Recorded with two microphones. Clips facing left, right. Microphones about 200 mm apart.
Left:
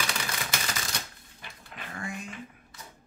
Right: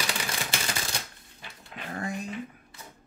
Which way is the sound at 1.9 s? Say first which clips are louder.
Right 5 dB; 35° right (ahead or behind).